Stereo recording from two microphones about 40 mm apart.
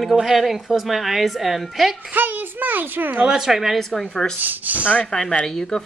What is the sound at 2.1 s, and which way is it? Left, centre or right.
A child's voice, right.